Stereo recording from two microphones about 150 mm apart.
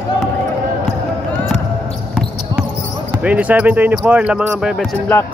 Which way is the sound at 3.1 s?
10° right (ahead or behind).